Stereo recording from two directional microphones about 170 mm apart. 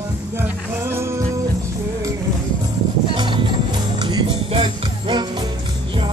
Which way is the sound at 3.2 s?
30° right (ahead or behind).